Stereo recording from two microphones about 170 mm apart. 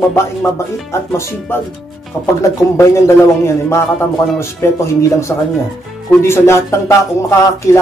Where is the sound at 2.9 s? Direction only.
15° left (ahead or behind).